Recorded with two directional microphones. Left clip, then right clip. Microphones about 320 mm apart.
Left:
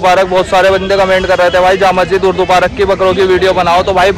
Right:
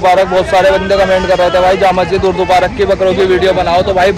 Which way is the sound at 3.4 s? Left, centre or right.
Left.